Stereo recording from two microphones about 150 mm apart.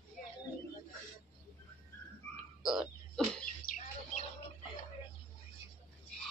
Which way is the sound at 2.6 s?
5° right (ahead or behind).